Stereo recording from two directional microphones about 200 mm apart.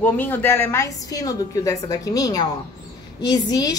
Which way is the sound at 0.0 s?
10° left (ahead or behind).